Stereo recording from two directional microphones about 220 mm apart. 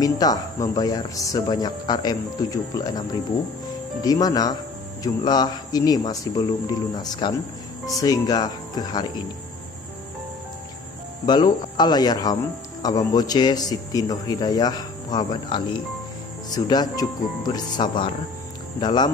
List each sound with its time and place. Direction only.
0.0 s speech: 15° left (ahead or behind)
11.2 s speech: 20° left (ahead or behind)